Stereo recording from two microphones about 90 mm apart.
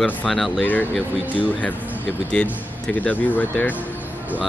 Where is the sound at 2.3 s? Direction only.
15° left (ahead or behind).